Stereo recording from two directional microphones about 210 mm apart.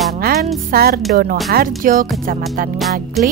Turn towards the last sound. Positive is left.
turn(degrees=0)  # may be behind; listen again after turning